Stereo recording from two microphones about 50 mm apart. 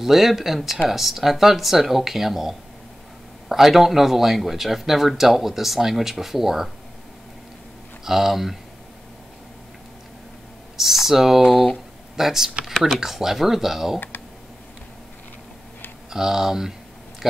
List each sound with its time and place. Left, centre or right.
0.0 s speech: centre
8.0 s speech: centre
10.8 s speech: centre
13.9 s computer keyboard: left
16.1 s speech: centre